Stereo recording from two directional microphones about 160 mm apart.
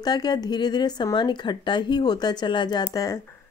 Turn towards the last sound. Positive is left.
turn(degrees=25)  # may be behind; listen again after turning